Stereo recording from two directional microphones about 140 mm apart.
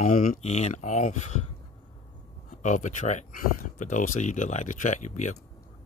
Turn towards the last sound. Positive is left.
turn(degrees=60)  # may be behind; listen again after turning